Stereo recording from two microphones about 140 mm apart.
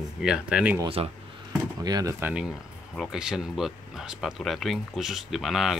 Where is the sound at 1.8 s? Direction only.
30° right (ahead or behind).